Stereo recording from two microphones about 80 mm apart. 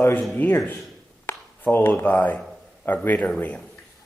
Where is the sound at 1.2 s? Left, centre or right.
Left.